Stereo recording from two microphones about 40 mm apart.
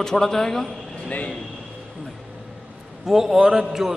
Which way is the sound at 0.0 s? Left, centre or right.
Centre.